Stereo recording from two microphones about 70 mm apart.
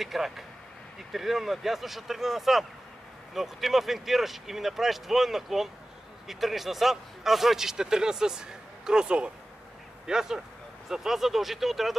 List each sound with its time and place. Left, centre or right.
0.0 s a man's voice: centre